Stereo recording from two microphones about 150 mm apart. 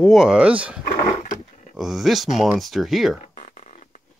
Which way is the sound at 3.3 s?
50° left (ahead or behind).